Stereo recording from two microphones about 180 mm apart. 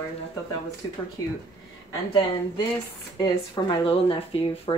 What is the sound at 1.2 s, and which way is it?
Speech, 20° left (ahead or behind).